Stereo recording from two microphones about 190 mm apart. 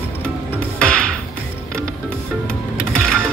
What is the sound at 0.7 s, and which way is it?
Music, 5° left (ahead or behind).